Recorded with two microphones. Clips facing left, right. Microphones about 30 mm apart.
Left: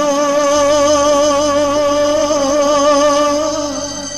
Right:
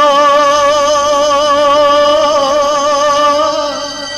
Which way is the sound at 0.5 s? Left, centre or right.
Right.